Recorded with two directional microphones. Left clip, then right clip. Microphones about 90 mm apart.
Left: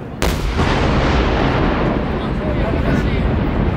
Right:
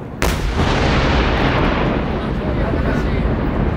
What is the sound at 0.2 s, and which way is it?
Artillery fire, centre (ahead or behind).